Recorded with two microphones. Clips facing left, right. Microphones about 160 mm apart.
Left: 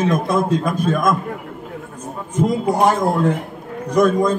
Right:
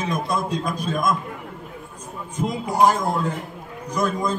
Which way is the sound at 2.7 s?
65° left (ahead or behind).